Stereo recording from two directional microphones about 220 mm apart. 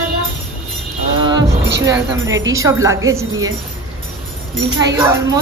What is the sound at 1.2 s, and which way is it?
Speech, 20° right (ahead or behind).